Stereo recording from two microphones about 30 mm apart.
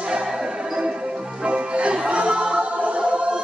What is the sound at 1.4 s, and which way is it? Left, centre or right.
Music, right.